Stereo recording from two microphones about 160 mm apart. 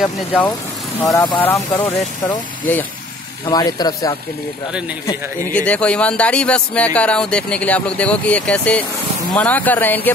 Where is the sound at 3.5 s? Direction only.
25° left (ahead or behind).